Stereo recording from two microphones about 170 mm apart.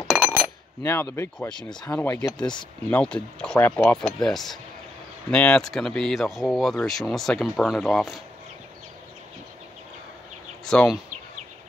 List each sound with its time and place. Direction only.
0.4 s speech: 15° left (ahead or behind)
10.6 s speech: 5° left (ahead or behind)